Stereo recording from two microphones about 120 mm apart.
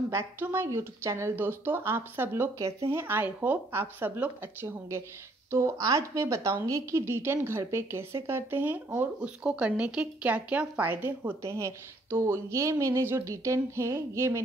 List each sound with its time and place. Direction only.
0.1 s a woman's voice: 20° right (ahead or behind)